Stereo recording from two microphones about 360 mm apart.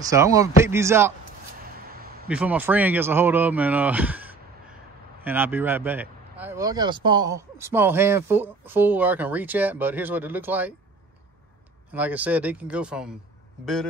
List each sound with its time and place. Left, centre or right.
0.1 s speech: centre
1.9 s a sound: right
2.2 s speech: centre
11.9 s speech: centre